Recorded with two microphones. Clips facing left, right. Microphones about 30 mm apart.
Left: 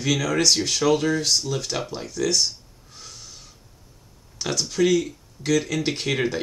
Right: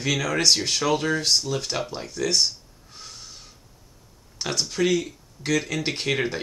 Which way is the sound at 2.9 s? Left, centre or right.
Centre.